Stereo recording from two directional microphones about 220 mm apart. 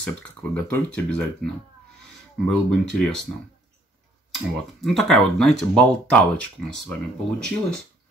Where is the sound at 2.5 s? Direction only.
5° left (ahead or behind).